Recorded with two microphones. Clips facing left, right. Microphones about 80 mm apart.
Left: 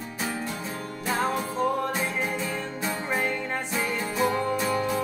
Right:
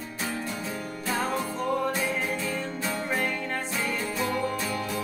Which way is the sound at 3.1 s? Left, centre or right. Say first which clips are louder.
Left 3 dB; centre.